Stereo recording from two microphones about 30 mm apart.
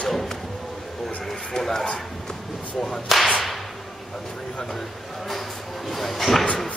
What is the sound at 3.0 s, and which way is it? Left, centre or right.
Speech, centre.